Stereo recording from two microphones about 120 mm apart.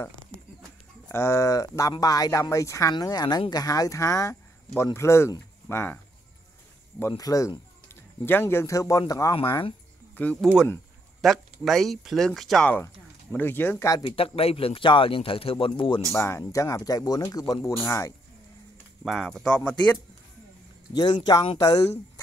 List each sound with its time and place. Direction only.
1.0 s speech: 20° left (ahead or behind)
7.0 s speech: 25° left (ahead or behind)
11.1 s speech: centre (ahead or behind)
12.7 s speech: 15° left (ahead or behind)
14.0 s speech: 50° left (ahead or behind)
16.1 s speech: 20° left (ahead or behind)
19.0 s speech: centre (ahead or behind)
20.9 s speech: 35° left (ahead or behind)